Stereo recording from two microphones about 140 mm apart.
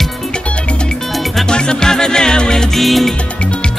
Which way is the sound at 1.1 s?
Centre (ahead or behind).